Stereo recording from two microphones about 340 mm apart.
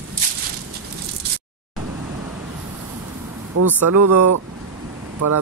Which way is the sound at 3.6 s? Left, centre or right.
Right.